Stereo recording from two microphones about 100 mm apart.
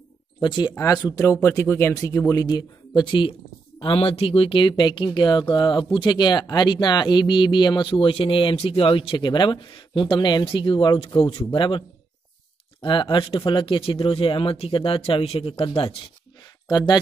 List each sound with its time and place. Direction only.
0.4 s speech: 50° left (ahead or behind)
0.7 s speech: 35° left (ahead or behind); by 3.3 s 55° left (ahead or behind)
3.8 s speech: 70° left (ahead or behind); by 11.8 s 55° left (ahead or behind)
12.8 s speech: 50° left (ahead or behind)
16.6 s speech: 45° left (ahead or behind)